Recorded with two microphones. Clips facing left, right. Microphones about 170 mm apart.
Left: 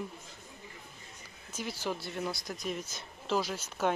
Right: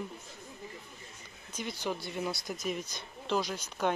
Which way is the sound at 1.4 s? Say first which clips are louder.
Even; 5° left (ahead or behind).